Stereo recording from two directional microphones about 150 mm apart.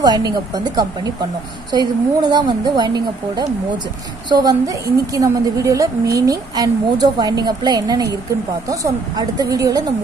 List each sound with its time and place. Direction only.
0.0 s a woman's voice: 25° right (ahead or behind)
1.7 s a woman's voice: 25° right (ahead or behind)